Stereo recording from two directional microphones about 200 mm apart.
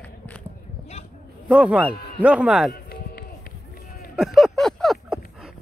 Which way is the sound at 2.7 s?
50° left (ahead or behind).